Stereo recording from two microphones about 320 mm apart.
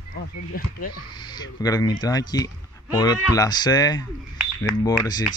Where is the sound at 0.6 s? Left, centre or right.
Left.